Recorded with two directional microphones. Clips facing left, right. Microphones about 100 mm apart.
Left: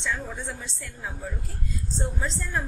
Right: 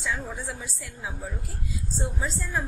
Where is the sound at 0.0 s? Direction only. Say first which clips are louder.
Even; 10° right (ahead or behind).